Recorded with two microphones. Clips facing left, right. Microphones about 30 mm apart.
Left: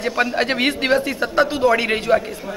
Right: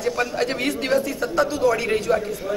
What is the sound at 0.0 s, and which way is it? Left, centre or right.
A man's voice, left.